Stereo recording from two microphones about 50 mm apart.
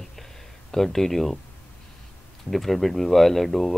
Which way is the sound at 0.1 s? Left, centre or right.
Centre.